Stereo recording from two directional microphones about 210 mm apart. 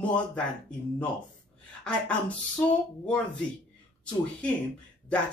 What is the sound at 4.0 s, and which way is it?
Speech, 5° left (ahead or behind).